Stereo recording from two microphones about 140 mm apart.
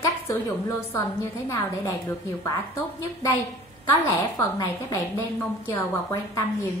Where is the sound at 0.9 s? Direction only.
15° left (ahead or behind).